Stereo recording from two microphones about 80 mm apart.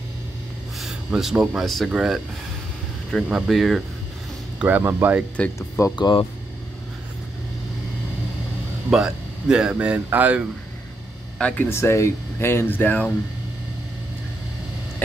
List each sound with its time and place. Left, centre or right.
0.7 s a sound: centre
1.3 s speech: centre
1.6 s speech: centre
3.3 s speech: centre
4.6 s speech: right
5.6 s speech: left
5.9 s speech: left
8.9 s speech: centre
11.3 s speech: centre
11.6 s speech: left